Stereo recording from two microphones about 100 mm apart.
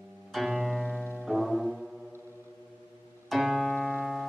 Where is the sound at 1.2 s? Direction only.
Centre (ahead or behind).